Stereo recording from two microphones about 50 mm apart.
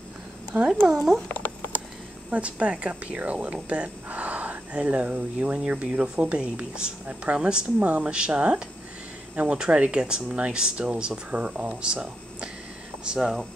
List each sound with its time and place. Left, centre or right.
0.5 s speech: right
0.9 s speech: centre
1.3 s a sound: left
2.3 s speech: right